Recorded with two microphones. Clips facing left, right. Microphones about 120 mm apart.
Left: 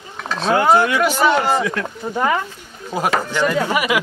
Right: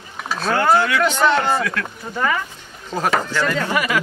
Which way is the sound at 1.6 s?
20° left (ahead or behind).